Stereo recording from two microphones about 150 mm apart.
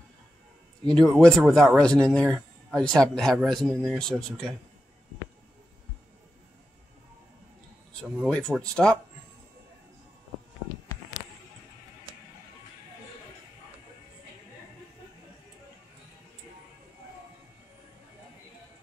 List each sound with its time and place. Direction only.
0.8 s speech: 5° left (ahead or behind)
8.3 s speech: 5° left (ahead or behind)